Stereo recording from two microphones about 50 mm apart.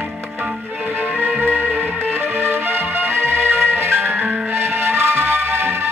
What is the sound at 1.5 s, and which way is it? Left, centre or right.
Music, left.